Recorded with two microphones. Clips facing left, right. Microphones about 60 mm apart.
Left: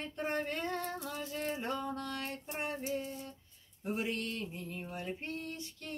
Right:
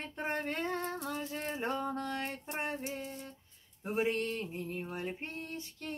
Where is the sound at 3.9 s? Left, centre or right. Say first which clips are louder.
Right 5 dB; right.